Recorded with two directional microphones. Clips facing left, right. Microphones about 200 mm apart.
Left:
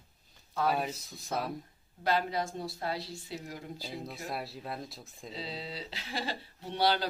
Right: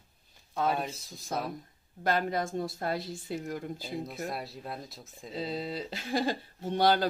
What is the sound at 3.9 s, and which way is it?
Speech, centre (ahead or behind).